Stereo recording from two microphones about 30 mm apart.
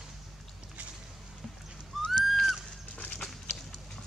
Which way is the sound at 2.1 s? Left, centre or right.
Centre.